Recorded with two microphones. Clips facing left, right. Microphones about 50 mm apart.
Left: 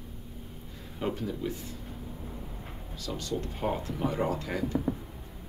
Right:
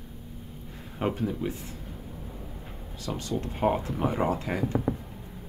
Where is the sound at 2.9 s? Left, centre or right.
Right.